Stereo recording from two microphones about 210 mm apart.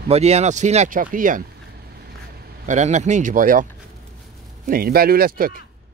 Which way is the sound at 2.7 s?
35° right (ahead or behind).